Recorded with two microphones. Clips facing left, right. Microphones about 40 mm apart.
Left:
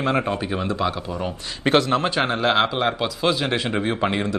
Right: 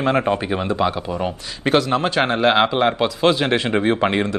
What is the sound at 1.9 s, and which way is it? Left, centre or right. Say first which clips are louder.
Speech: right 2 dB; centre.